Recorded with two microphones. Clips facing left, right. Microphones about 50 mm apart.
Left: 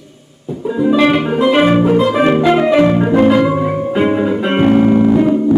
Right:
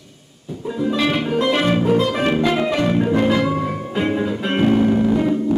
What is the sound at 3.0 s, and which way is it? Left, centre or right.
Music, left.